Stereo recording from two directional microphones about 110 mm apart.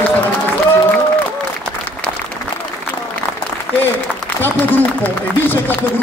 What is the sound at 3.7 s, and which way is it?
Applause, 15° right (ahead or behind).